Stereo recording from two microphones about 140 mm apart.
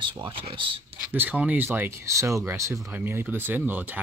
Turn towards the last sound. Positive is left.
turn(degrees=-15)  # may be behind; listen again after turning